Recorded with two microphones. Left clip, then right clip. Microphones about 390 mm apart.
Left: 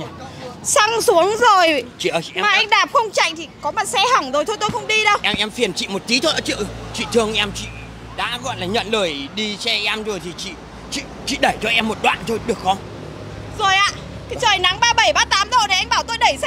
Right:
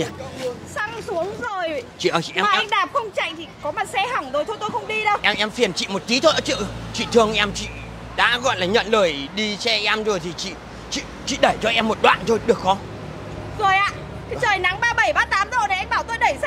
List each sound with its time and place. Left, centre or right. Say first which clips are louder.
0.7 s a woman's voice: left 13 dB; left
3.9 s speech: left 8 dB; left
4.6 s a woman's voice: left 6 dB; left
5.2 s speech: even; centre
8.2 s a man's voice: right 5 dB; right
8.9 s speech: right 2 dB; centre
11.0 s speech: even; centre
14.4 s a sound: left 4 dB; left